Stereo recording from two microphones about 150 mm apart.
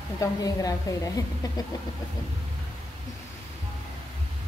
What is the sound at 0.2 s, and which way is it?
A woman's voice, 25° left (ahead or behind).